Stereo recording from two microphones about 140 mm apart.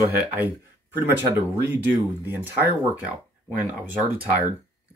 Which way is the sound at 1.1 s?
15° right (ahead or behind).